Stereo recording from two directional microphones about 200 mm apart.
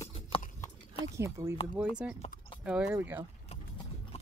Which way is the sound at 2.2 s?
30° left (ahead or behind).